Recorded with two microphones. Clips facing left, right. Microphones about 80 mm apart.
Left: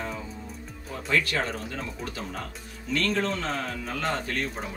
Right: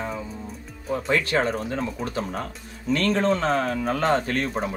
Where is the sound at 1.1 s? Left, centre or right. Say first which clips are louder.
Right 3 dB; right.